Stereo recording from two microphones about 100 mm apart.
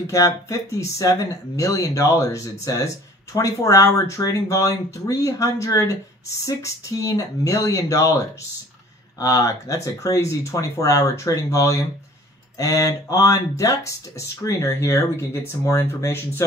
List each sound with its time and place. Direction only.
0.0 s speech: 30° left (ahead or behind)
9.2 s speech: 35° left (ahead or behind)